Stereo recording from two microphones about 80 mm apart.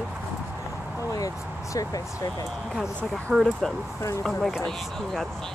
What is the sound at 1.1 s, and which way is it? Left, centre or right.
Speech, left.